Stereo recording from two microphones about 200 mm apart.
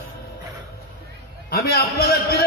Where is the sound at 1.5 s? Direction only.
50° left (ahead or behind).